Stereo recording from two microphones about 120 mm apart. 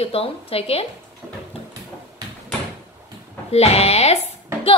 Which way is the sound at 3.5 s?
60° left (ahead or behind).